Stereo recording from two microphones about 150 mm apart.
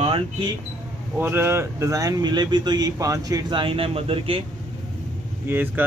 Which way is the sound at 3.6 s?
40° right (ahead or behind).